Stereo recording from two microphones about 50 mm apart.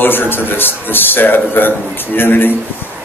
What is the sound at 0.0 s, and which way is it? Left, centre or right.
Speech, left.